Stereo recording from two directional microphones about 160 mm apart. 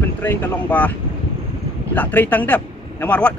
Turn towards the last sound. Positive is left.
turn(degrees=10)  # may be behind; listen again after turning